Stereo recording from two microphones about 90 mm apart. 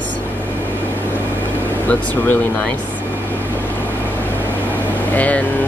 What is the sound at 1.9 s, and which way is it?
Speech, 15° left (ahead or behind).